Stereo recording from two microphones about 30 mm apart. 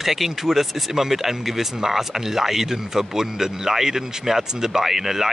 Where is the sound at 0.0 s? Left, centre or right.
Centre.